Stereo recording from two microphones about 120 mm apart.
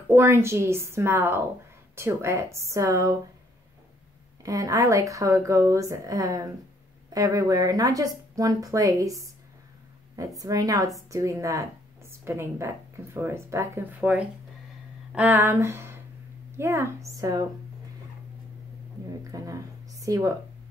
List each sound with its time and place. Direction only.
0.1 s speech: 20° right (ahead or behind)
4.4 s speech: 30° right (ahead or behind)
19.3 s speech: 25° right (ahead or behind)